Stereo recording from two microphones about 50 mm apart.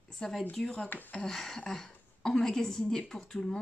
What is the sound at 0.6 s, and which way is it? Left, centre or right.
Speech, centre.